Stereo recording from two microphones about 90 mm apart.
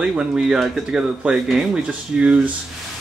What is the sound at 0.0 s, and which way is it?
Speech, 10° right (ahead or behind).